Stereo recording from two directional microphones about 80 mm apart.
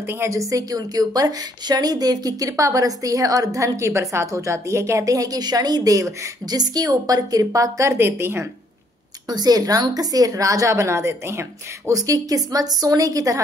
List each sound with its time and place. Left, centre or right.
0.0 s a woman's voice: right
9.3 s a woman's voice: right
11.9 s a woman's voice: right